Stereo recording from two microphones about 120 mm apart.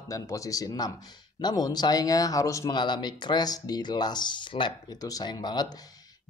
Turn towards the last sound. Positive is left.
turn(degrees=35)  # may be behind; listen again after turning